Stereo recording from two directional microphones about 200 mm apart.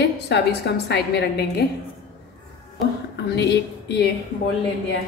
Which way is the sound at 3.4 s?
55° left (ahead or behind).